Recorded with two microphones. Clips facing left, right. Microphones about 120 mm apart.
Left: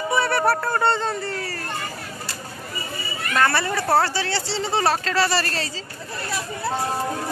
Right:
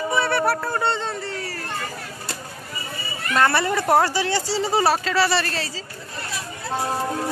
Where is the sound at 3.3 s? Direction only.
20° right (ahead or behind); by 5.7 s centre (ahead or behind).